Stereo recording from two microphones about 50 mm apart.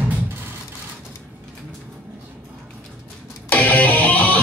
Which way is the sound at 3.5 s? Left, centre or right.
Left.